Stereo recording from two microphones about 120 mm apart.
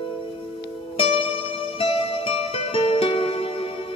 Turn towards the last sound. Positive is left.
turn(degrees=50)  # may be behind; listen again after turning